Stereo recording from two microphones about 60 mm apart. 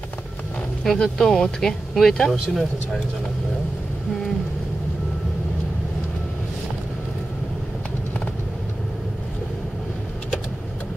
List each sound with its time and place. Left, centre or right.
0.8 s speech: centre